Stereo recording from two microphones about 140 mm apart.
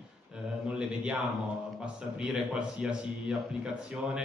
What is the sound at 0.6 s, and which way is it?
Speech, 10° right (ahead or behind).